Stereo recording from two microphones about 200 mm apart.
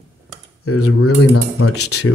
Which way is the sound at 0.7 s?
90° left.